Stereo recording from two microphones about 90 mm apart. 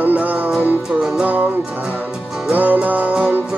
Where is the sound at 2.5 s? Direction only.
20° right (ahead or behind).